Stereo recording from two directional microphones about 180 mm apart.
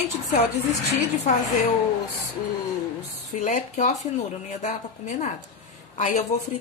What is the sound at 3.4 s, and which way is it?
A woman's voice, 40° left (ahead or behind).